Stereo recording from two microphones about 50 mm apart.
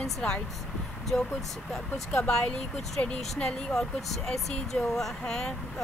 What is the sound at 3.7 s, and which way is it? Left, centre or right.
Speech, centre.